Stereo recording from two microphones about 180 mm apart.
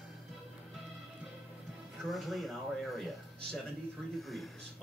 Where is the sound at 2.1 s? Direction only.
Centre (ahead or behind).